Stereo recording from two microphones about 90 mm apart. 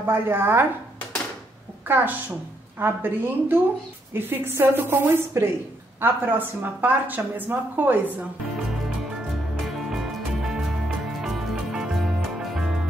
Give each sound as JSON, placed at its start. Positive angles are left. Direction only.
{"t": 0.0, "sound": "a woman's voice", "side_deg": -25}
{"t": 1.9, "sound": "a woman's voice", "side_deg": -20}
{"t": 9.8, "sound": "music", "side_deg": -5}